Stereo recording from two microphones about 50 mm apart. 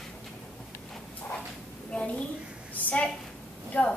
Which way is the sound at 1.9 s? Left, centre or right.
Left.